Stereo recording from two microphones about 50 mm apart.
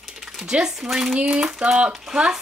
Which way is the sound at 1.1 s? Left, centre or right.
Centre.